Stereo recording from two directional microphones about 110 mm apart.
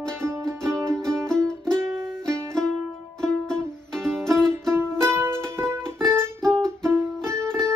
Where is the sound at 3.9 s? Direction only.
5° left (ahead or behind).